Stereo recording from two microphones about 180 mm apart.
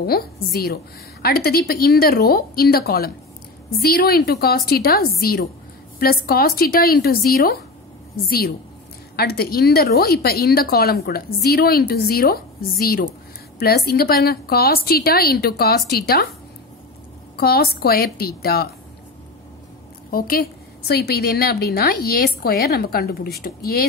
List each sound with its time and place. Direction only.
0.0 s a woman's voice: 55° left (ahead or behind)
9.1 s a woman's voice: 60° left (ahead or behind)
17.4 s a woman's voice: 60° left (ahead or behind)
20.1 s a woman's voice: 55° left (ahead or behind)